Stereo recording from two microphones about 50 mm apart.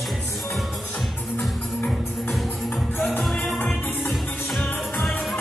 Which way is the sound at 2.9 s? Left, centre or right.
Left.